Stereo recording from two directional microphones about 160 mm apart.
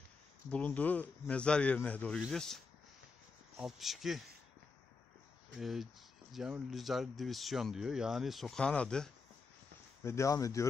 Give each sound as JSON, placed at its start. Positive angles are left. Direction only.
{"t": 0.5, "sound": "speech", "side_deg": 10}
{"t": 3.6, "sound": "speech", "side_deg": 0}
{"t": 5.6, "sound": "speech", "side_deg": 0}
{"t": 10.0, "sound": "speech", "side_deg": 20}